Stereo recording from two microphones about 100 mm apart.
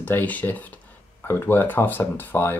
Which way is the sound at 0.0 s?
15° left (ahead or behind).